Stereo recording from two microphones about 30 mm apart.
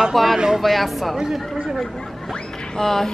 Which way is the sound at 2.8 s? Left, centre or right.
Centre.